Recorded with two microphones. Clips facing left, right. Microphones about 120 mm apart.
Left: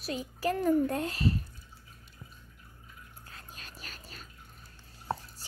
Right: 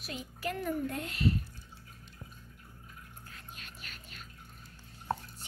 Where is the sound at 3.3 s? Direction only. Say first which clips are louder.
Left 3 dB; 35° left (ahead or behind).